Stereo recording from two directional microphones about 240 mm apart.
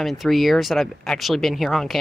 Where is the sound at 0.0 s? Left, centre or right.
Centre.